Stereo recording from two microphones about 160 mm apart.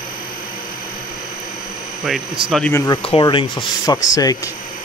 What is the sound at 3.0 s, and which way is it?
Speech, 35° left (ahead or behind).